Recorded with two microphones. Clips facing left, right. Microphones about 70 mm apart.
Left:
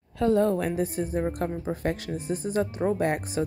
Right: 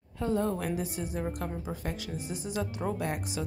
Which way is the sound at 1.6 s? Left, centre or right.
Left.